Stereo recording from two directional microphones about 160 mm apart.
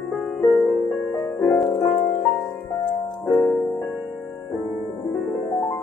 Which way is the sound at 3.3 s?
5° left (ahead or behind).